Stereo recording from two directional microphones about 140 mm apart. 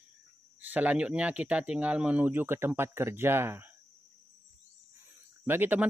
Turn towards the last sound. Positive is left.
turn(degrees=-15)  # may be behind; listen again after turning